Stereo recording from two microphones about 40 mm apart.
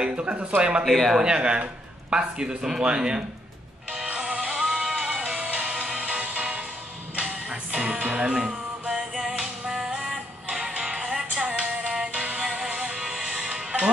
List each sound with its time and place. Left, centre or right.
0.0 s speech: right
0.8 s speech: centre
1.2 s speech: right
3.9 s music: right
4.6 s music: centre
5.0 s music: right
9.4 s music: centre
10.1 s music: right
11.8 s music: right